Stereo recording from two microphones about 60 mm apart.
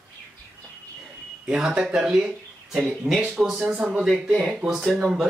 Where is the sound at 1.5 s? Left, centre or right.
Centre.